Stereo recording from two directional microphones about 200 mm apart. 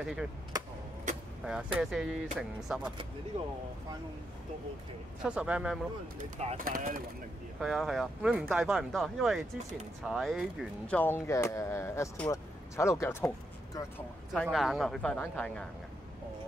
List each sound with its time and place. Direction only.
0.0 s speech: centre (ahead or behind)
1.4 s speech: 5° right (ahead or behind)
5.2 s speech: 5° right (ahead or behind)
6.3 s speech: 40° right (ahead or behind)
7.6 s speech: centre (ahead or behind)
11.0 s speech: 10° left (ahead or behind)
14.3 s speech: centre (ahead or behind)